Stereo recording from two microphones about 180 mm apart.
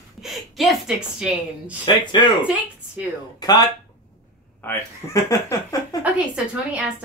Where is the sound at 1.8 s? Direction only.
25° left (ahead or behind).